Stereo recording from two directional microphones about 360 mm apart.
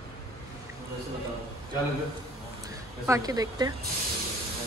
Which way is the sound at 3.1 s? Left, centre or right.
Centre.